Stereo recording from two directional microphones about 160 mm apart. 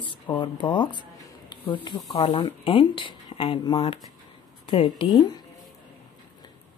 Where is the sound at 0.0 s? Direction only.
30° left (ahead or behind).